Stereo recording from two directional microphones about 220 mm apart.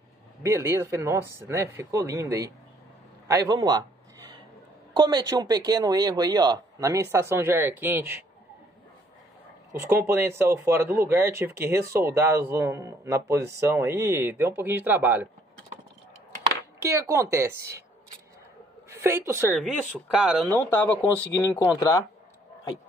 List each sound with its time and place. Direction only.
0.4 s speech: 10° right (ahead or behind)
3.3 s a sound: 15° right (ahead or behind)
4.9 s a woman's voice: 20° right (ahead or behind)
9.7 s speech: 10° right (ahead or behind)
16.8 s speech: 15° right (ahead or behind)
18.9 s a woman's voice: 10° right (ahead or behind)
20.4 s speech: 10° left (ahead or behind)